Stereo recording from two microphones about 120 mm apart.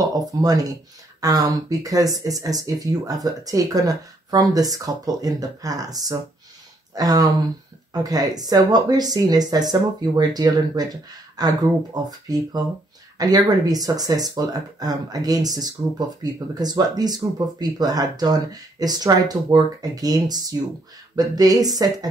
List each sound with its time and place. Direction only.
0.0 s speech: 30° right (ahead or behind)